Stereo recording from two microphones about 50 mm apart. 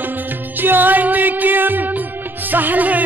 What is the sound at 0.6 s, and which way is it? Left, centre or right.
Music, right.